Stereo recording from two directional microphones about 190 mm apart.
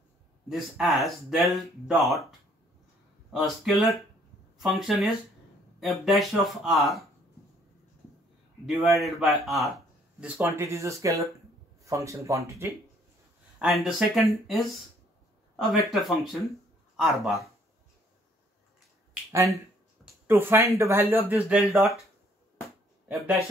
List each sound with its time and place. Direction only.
0.5 s speech: centre (ahead or behind)
3.3 s speech: centre (ahead or behind)
8.6 s speech: centre (ahead or behind); by 12.7 s 15° right (ahead or behind)
13.6 s speech: centre (ahead or behind)
15.7 s speech: centre (ahead or behind)
20.2 s speech: 10° right (ahead or behind)
23.0 s speech: 5° right (ahead or behind)